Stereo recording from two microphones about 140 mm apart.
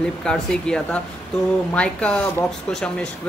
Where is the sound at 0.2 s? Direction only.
5° left (ahead or behind).